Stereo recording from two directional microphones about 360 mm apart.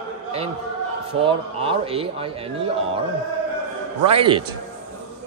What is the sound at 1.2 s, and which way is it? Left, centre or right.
A man's voice, centre.